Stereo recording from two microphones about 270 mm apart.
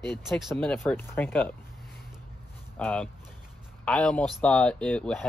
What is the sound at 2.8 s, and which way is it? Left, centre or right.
Speech, centre.